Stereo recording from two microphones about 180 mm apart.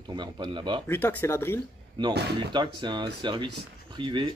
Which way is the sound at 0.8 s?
10° left (ahead or behind).